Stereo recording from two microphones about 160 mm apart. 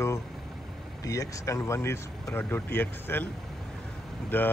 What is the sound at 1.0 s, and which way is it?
Speech, 20° left (ahead or behind).